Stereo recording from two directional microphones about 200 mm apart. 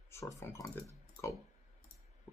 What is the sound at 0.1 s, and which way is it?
Speech, 15° left (ahead or behind).